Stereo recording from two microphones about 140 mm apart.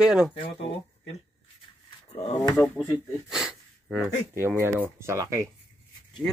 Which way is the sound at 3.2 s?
5° right (ahead or behind).